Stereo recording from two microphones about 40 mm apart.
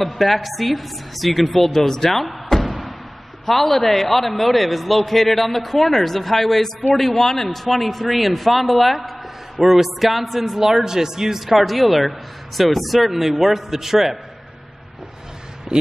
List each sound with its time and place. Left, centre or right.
0.0 s a man's voice: centre
15.7 s speech: centre